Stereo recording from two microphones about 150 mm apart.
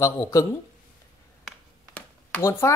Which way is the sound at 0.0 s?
20° left (ahead or behind).